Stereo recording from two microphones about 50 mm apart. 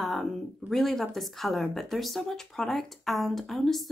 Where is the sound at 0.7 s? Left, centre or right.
Centre.